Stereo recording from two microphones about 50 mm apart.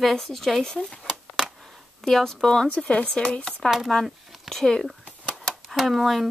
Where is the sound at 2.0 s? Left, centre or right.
Centre.